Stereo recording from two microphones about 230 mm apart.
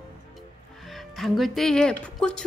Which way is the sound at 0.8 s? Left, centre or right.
Centre.